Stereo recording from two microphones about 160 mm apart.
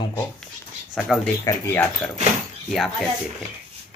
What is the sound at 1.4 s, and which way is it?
Speech, 15° left (ahead or behind).